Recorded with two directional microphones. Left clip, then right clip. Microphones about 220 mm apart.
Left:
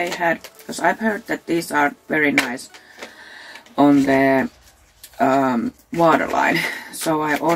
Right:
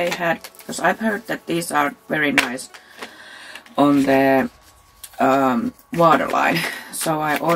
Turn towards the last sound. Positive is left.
turn(degrees=-5)  # may be behind; listen again after turning